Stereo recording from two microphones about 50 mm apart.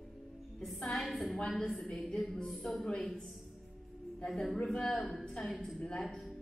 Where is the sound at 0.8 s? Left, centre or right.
Centre.